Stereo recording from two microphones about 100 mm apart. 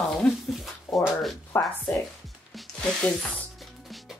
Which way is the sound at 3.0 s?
10° left (ahead or behind).